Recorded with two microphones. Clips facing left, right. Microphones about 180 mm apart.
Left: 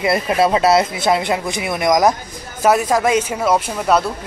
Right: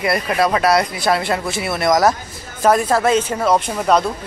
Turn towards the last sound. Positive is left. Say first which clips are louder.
# even
turn(degrees=5)  # may be behind; listen again after turning